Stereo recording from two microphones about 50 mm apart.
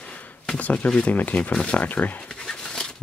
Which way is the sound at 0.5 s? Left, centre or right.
Left.